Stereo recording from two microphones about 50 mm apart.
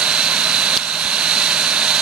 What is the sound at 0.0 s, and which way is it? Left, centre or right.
Vehicle, centre.